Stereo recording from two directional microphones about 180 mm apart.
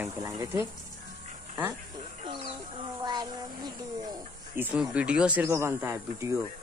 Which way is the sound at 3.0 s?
25° right (ahead or behind).